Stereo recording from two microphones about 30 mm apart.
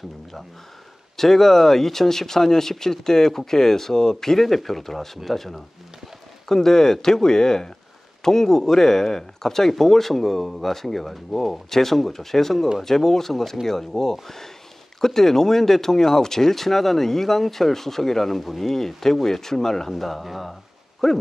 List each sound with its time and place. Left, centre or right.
1.1 s speech: centre
6.5 s speech: centre
19.9 s speech: centre